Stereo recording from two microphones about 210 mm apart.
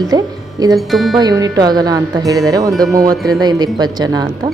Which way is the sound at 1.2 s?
20° right (ahead or behind).